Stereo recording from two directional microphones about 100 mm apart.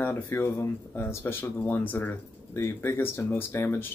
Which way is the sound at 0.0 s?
20° left (ahead or behind).